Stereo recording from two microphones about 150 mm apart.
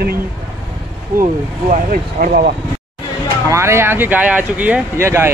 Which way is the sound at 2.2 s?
75° right (ahead or behind).